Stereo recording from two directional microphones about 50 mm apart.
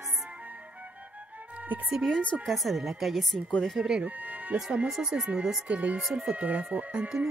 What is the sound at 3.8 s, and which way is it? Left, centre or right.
Speech, centre.